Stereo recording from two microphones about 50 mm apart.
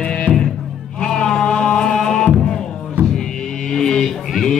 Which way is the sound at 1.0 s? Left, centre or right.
Centre.